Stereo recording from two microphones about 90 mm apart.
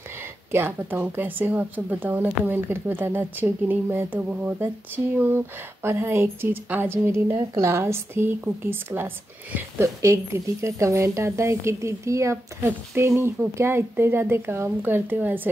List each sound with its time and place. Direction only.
0.2 s a woman's voice: 25° right (ahead or behind)